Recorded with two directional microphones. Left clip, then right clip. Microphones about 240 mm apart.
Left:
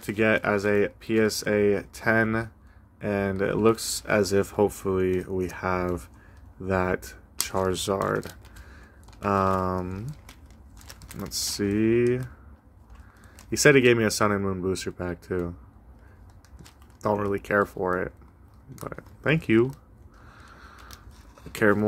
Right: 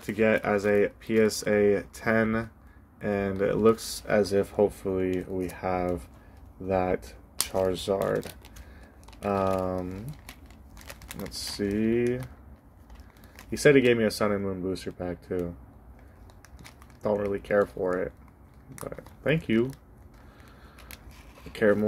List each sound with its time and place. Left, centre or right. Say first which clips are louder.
0.0 s speech: left 1 dB; centre
11.2 s speech: left 3 dB; left
13.5 s speech: left 2 dB; left
17.0 s speech: left 2 dB; left
21.5 s speech: left 1 dB; left